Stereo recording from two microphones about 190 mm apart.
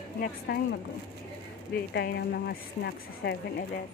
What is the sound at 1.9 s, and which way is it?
A woman's voice, 60° left (ahead or behind).